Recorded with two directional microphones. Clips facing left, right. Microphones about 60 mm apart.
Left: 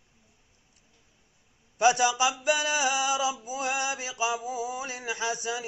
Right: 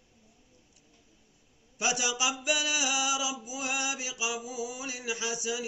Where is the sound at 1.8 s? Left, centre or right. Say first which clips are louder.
Left 8 dB; left.